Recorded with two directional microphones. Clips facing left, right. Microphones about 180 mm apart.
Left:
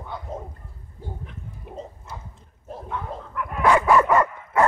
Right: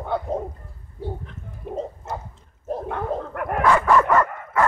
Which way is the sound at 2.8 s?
60° right (ahead or behind).